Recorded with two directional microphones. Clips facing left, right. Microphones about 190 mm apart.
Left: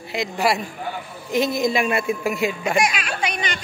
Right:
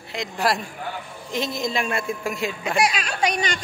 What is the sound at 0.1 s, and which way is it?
Speech, 5° left (ahead or behind).